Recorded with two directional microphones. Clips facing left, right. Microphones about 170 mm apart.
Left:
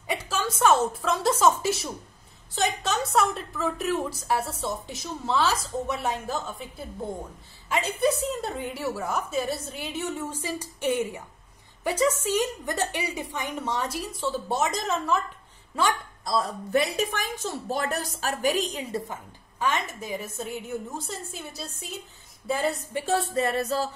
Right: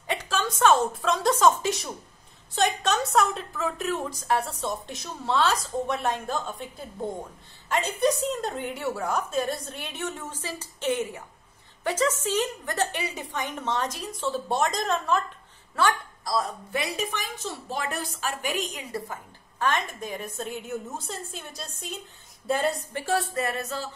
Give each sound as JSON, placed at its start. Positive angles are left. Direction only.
{"t": 0.0, "sound": "a woman's voice", "side_deg": 5}
{"t": 15.7, "sound": "a woman's voice", "side_deg": 15}
{"t": 16.3, "sound": "a woman's voice", "side_deg": 35}
{"t": 19.6, "sound": "a woman's voice", "side_deg": 10}
{"t": 22.9, "sound": "a woman's voice", "side_deg": 20}